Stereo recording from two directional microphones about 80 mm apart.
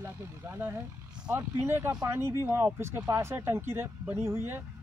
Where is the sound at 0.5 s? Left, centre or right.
Right.